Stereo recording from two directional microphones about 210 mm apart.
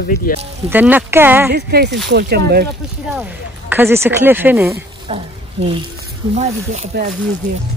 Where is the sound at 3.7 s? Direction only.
10° right (ahead or behind).